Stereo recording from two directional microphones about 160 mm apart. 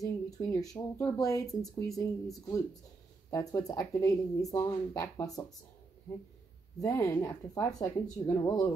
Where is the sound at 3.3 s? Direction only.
20° left (ahead or behind).